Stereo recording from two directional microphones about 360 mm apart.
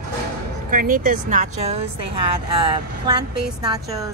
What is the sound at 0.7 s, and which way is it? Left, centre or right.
Speech, right.